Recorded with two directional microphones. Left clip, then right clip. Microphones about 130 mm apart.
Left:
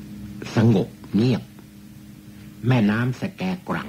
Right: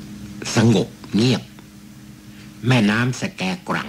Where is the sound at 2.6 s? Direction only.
40° right (ahead or behind).